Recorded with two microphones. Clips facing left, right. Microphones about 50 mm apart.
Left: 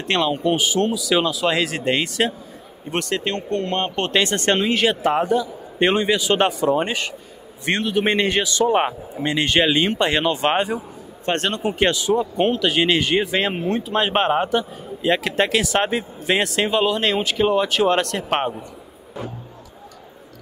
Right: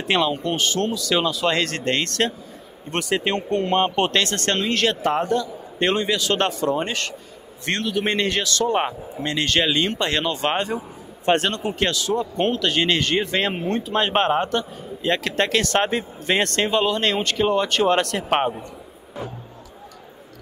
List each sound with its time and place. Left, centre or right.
0.0 s speech: centre
0.3 s a man's voice: centre
3.2 s speech: centre
4.2 s a man's voice: centre
12.2 s speech: centre